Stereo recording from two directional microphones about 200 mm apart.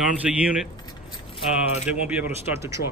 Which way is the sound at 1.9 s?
5° right (ahead or behind).